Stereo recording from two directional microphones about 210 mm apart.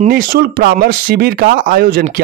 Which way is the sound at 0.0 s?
45° right (ahead or behind).